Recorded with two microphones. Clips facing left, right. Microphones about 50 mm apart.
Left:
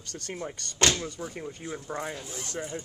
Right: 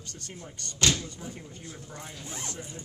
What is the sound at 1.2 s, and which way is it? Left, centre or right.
Speech, left.